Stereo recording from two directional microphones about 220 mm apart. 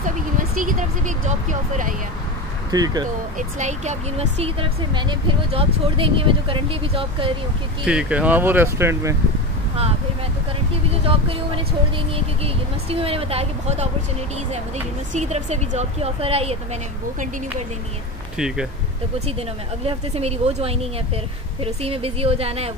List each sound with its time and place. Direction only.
0.6 s speech: 35° right (ahead or behind)
2.7 s speech: 20° right (ahead or behind)
3.3 s speech: 35° right (ahead or behind)
7.8 s speech: 5° right (ahead or behind)
10.7 s speech: 25° right (ahead or behind)
12.9 s speech: 25° right (ahead or behind)
15.1 s speech: 30° right (ahead or behind)
19.9 s speech: 30° right (ahead or behind)